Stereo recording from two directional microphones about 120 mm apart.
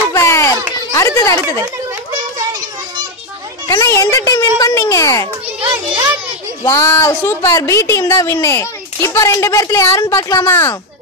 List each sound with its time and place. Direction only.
0.1 s children playing: 20° left (ahead or behind)
0.9 s a woman's voice: 25° left (ahead or behind)
3.6 s a woman's voice: 25° left (ahead or behind)
6.6 s a woman's voice: 25° left (ahead or behind)